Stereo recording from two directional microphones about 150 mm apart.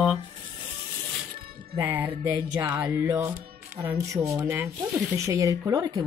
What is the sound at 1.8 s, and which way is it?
Speech, 15° right (ahead or behind).